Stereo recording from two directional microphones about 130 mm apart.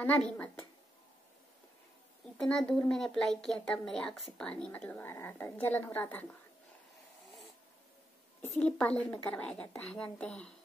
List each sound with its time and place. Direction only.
0.0 s a woman's voice: 10° left (ahead or behind)
2.3 s a woman's voice: 5° left (ahead or behind)
8.5 s a woman's voice: 10° left (ahead or behind)